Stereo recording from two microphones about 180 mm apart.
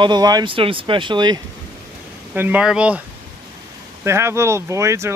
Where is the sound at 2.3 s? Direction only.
10° right (ahead or behind).